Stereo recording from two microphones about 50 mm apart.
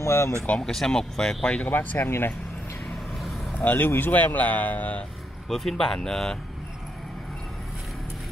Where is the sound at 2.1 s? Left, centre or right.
Left.